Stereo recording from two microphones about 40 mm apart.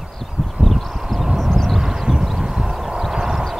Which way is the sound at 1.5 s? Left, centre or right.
Centre.